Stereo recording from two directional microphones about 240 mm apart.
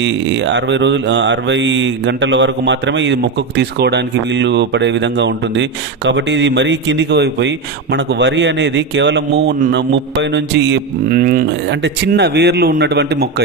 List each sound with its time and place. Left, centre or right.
0.0 s mantra: right